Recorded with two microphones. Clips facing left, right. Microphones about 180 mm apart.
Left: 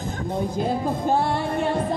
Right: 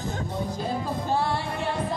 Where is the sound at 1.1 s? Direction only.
50° left (ahead or behind).